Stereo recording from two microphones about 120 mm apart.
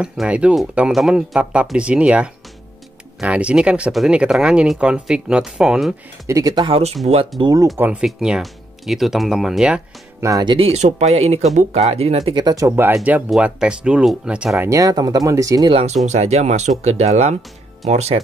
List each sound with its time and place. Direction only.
0.0 s speech: 10° right (ahead or behind)
6.2 s speech: 30° right (ahead or behind)
6.7 s speech: 60° right (ahead or behind)
7.7 s speech: 15° right (ahead or behind)
10.4 s speech: 40° right (ahead or behind)
10.7 s speech: 65° right (ahead or behind)
12.4 s speech: 30° right (ahead or behind); by 14.7 s 10° right (ahead or behind)
14.7 s speech: 30° right (ahead or behind)
15.7 s speech: 65° right (ahead or behind)